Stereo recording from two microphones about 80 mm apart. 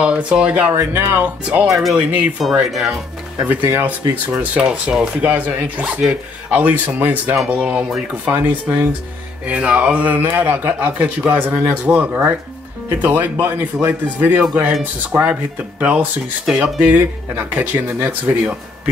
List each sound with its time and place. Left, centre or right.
0.0 s speech: centre
0.7 s speech: right
1.7 s speech: centre
3.4 s speech: right
4.3 s speech: centre